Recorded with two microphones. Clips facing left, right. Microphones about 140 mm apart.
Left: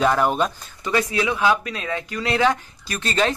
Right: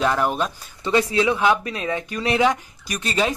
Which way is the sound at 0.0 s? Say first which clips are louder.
Left 2 dB; centre (ahead or behind).